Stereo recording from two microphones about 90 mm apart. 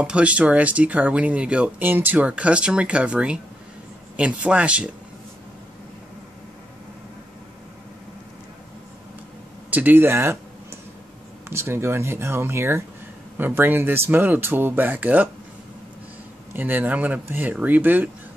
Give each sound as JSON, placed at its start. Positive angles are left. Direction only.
{"t": 0.0, "sound": "speech", "side_deg": -15}
{"t": 9.7, "sound": "a sound", "side_deg": -20}
{"t": 11.4, "sound": "speech", "side_deg": -30}
{"t": 16.5, "sound": "speech", "side_deg": -20}